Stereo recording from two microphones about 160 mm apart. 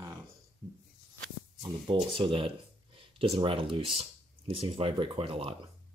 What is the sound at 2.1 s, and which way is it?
Speech, 35° right (ahead or behind).